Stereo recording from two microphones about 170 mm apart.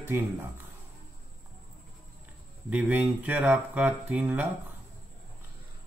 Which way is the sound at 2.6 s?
10° right (ahead or behind).